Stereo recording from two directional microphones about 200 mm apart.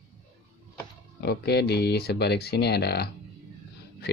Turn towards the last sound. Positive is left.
turn(degrees=55)  # may be behind; listen again after turning